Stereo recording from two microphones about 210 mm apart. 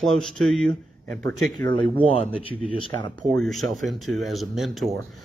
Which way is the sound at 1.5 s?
20° left (ahead or behind).